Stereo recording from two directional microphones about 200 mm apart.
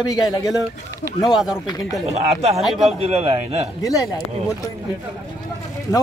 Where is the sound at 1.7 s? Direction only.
20° left (ahead or behind).